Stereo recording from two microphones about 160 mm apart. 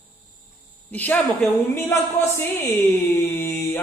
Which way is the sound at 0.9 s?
10° left (ahead or behind).